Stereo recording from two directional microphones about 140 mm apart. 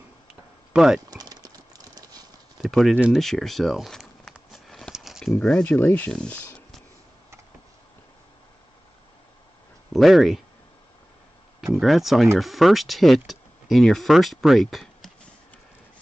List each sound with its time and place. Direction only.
0.3 s a sound: 5° right (ahead or behind)
1.1 s clip-clop: 30° right (ahead or behind)
2.6 s speech: centre (ahead or behind)
3.0 s a sound: centre (ahead or behind)
5.3 s speech: 5° left (ahead or behind)
9.9 s speech: centre (ahead or behind)
11.6 s speech: centre (ahead or behind)